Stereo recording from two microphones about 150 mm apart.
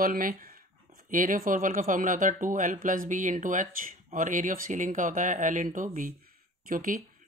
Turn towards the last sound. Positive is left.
turn(degrees=-65)  # may be behind; listen again after turning